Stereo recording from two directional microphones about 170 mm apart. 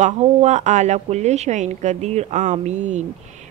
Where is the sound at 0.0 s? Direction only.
40° right (ahead or behind).